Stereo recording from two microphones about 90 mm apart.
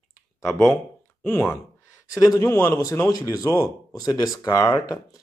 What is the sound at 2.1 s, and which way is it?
Speech, 40° left (ahead or behind).